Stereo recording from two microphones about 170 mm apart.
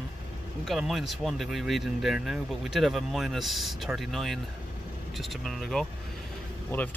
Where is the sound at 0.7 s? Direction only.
Centre (ahead or behind).